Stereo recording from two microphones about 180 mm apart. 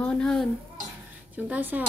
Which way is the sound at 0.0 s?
5° left (ahead or behind).